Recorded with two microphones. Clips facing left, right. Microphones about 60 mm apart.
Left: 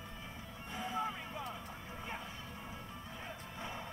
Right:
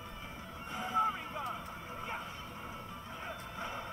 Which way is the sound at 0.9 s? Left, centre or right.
Right.